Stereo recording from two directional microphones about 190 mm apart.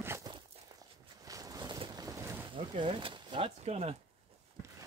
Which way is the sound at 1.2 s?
20° right (ahead or behind).